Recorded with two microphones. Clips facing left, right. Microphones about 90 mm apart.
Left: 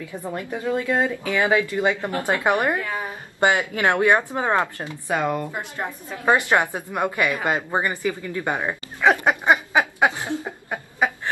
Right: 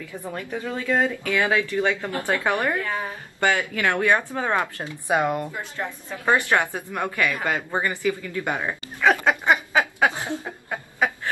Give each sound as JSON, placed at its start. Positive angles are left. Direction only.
{"t": 0.1, "sound": "speech", "side_deg": 20}
{"t": 5.0, "sound": "speech", "side_deg": -20}
{"t": 5.8, "sound": "a woman's voice", "side_deg": 15}